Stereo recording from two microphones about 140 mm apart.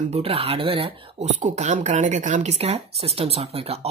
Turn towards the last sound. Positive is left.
turn(degrees=-45)  # may be behind; listen again after turning